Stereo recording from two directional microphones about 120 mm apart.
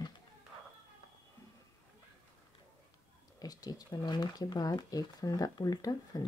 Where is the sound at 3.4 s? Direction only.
30° left (ahead or behind).